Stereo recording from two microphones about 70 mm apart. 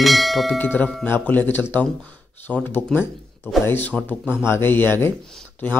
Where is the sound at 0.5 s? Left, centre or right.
Left.